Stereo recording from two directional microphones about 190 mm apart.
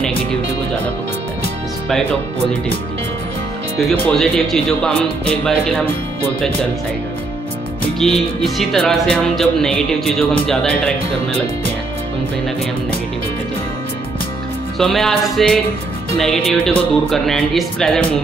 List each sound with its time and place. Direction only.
3.9 s speech: 5° left (ahead or behind)
8.0 s speech: centre (ahead or behind)
14.8 s speech: centre (ahead or behind)